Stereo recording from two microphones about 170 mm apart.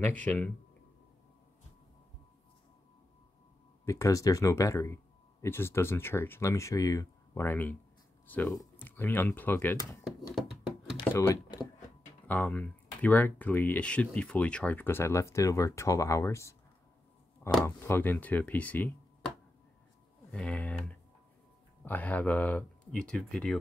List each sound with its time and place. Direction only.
0.0 s speech: 10° left (ahead or behind)
3.8 s speech: 20° left (ahead or behind)
11.0 s speech: 25° left (ahead or behind)
12.3 s speech: 10° left (ahead or behind)
17.6 s speech: 15° left (ahead or behind)
20.2 s speech: 5° left (ahead or behind)